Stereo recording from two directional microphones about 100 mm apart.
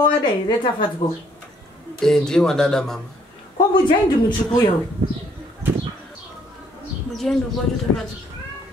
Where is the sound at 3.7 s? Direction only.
50° left (ahead or behind).